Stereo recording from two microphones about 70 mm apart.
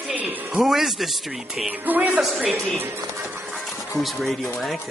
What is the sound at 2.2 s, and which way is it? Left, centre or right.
Speech, centre.